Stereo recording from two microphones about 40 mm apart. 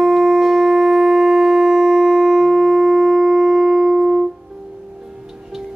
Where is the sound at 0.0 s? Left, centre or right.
Centre.